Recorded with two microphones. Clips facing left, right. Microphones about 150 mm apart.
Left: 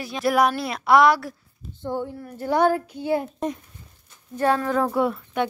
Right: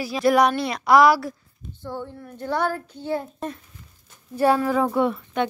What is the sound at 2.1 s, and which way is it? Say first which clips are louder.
A child's voice: left 4 dB; 5° left (ahead or behind).